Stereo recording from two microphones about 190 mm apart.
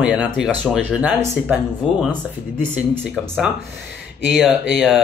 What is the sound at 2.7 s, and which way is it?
Speech, 10° right (ahead or behind).